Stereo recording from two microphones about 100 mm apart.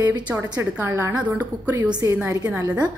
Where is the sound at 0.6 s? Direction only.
25° right (ahead or behind).